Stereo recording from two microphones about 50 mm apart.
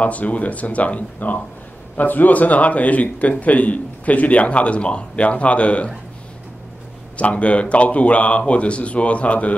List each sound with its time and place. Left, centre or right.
0.0 s speech: left
7.2 s speech: left